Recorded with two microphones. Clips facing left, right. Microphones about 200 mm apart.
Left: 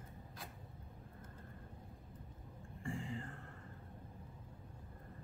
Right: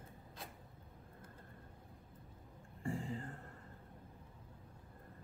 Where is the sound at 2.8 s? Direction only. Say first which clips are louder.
Right 3 dB; 40° right (ahead or behind).